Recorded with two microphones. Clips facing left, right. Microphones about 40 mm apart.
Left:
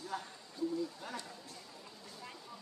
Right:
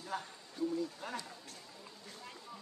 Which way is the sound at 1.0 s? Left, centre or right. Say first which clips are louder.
Right 2 dB; right.